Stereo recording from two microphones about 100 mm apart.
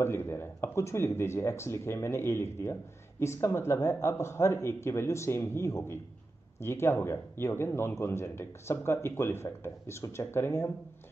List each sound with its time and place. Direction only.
0.0 s speech: 25° left (ahead or behind)